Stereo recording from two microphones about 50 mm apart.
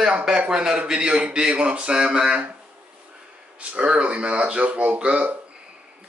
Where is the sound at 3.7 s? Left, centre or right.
Right.